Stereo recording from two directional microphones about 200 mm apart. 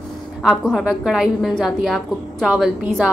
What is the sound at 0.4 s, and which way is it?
A woman's voice, centre (ahead or behind).